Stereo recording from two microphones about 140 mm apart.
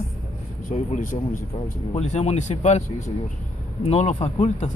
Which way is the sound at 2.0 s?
55° left (ahead or behind).